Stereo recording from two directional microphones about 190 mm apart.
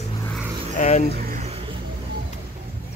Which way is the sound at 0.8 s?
40° left (ahead or behind).